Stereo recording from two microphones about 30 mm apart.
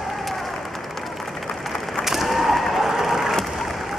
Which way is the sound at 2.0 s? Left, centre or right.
Centre.